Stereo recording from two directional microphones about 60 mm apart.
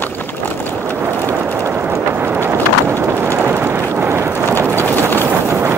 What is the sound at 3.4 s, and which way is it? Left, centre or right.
Vehicle, right.